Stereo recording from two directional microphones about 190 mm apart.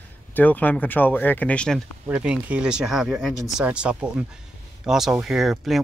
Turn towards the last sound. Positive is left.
turn(degrees=0)  # may be behind; listen again after turning